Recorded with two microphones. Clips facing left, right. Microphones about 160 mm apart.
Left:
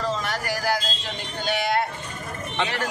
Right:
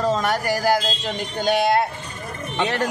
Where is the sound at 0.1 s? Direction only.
50° right (ahead or behind).